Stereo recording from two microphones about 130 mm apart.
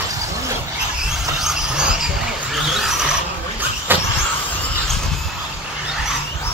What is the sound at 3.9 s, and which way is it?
Vehicle, 15° right (ahead or behind).